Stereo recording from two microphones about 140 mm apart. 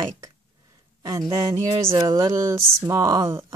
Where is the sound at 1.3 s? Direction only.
30° right (ahead or behind).